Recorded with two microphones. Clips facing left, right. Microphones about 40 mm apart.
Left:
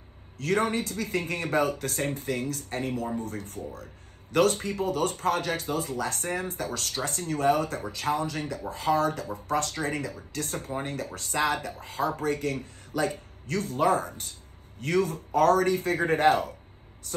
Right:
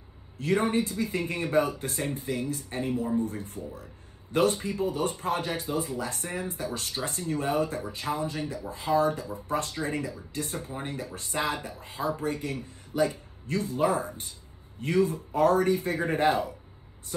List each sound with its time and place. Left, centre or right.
0.4 s speech: left
3.7 s a sound: left
4.6 s speech: left